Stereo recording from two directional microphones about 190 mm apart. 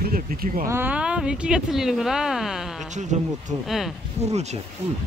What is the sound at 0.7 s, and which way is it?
Speech, 10° right (ahead or behind).